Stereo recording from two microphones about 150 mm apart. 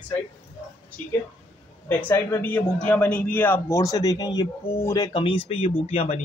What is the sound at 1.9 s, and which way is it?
A man's voice, 15° left (ahead or behind).